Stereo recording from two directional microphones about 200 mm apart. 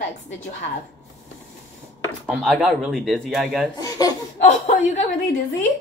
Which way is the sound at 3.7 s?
20° left (ahead or behind).